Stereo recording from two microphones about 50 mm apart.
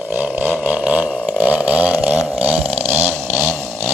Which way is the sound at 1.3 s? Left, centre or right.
Right.